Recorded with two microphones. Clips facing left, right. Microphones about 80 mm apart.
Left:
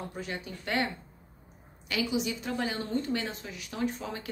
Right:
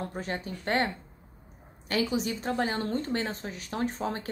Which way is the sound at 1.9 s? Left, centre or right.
Right.